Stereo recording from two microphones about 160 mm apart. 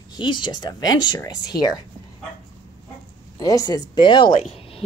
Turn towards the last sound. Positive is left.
turn(degrees=35)  # may be behind; listen again after turning